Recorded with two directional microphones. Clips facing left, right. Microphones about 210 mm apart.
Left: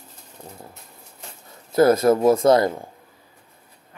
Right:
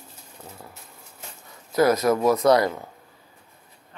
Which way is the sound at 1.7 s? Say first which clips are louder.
Left 4 dB; 30° left (ahead or behind).